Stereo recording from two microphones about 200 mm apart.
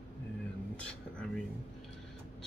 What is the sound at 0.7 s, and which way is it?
Speech, 5° left (ahead or behind).